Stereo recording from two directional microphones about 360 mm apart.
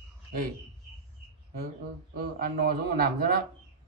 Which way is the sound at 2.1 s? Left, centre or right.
Right.